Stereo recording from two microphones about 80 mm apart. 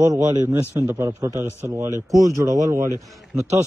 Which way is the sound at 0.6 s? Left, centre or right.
Right.